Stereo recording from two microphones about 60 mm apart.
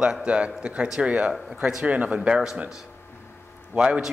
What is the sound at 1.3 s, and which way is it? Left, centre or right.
Speech, centre.